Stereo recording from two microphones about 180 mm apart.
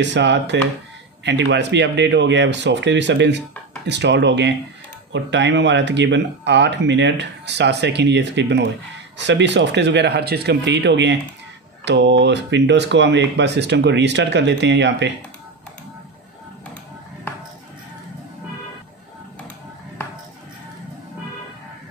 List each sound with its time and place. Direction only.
0.0 s speech: 80° right